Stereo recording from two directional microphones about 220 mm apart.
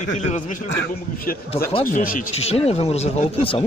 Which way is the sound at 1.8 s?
40° left (ahead or behind).